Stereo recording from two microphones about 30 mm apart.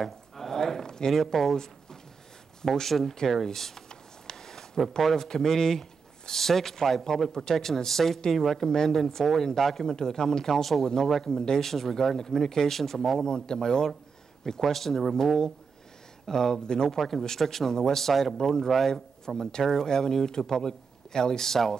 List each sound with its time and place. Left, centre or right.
0.5 s a sound: centre
1.1 s speech: centre
3.9 s a sound: centre
5.0 s speech: centre
9.8 s speech: left
10.5 s speech: centre
10.8 s speech: centre
11.6 s speech: centre
13.2 s speech: left
14.4 s speech: centre
17.4 s speech: centre
19.2 s speech: left